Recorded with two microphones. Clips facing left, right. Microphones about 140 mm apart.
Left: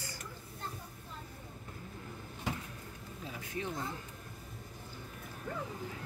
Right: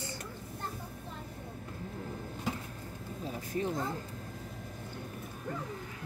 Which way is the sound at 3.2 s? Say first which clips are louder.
Right 6 dB; 40° right (ahead or behind).